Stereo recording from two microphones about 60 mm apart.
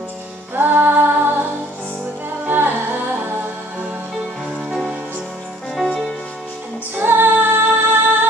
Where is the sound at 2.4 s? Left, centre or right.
Right.